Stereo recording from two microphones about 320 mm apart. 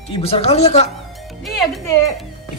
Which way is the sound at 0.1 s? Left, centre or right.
Centre.